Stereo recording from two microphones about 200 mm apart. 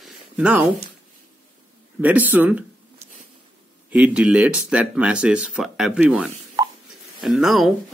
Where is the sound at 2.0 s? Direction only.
10° right (ahead or behind).